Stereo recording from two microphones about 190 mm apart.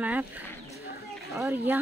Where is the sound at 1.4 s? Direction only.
15° right (ahead or behind).